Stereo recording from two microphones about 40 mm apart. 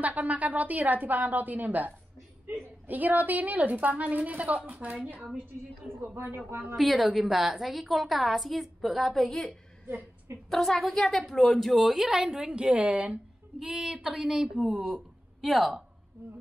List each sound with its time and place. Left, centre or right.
0.0 s a woman's voice: right
7.2 s a woman's voice: centre
12.3 s a woman's voice: right
13.7 s speech: right
15.4 s a woman's voice: centre